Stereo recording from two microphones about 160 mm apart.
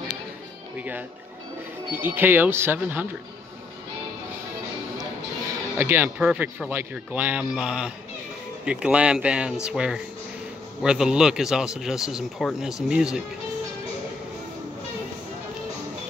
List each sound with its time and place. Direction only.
0.7 s speech: 10° right (ahead or behind)
5.8 s speech: 15° right (ahead or behind)